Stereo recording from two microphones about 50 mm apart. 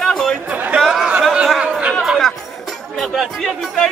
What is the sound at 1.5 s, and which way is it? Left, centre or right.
Chatter, centre.